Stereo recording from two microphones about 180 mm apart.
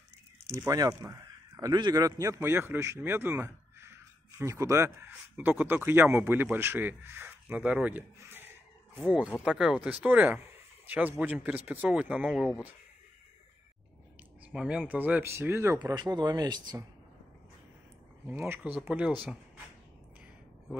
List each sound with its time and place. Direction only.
0.6 s speech: 20° right (ahead or behind)
9.0 s speech: centre (ahead or behind)
14.5 s speech: 5° right (ahead or behind); by 16.8 s 25° right (ahead or behind)
18.2 s speech: 10° right (ahead or behind)